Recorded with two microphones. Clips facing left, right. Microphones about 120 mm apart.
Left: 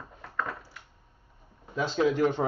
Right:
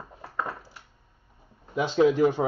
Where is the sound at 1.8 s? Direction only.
15° right (ahead or behind).